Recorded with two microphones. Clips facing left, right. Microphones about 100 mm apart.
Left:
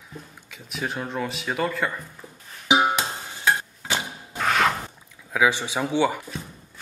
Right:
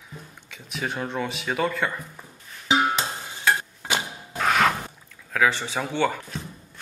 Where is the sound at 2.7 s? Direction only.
15° left (ahead or behind).